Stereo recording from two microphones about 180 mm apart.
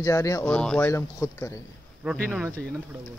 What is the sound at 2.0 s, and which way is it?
Speech, 5° right (ahead or behind).